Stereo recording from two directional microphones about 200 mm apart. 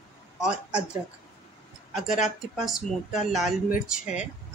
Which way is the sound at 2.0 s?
40° left (ahead or behind).